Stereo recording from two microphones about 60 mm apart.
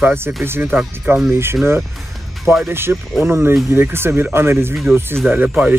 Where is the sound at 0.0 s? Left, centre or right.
Right.